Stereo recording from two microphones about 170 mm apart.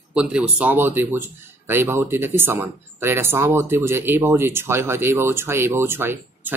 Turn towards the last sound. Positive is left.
turn(degrees=-15)  # may be behind; listen again after turning